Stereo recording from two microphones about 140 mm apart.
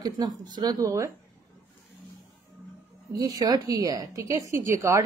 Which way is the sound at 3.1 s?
25° right (ahead or behind).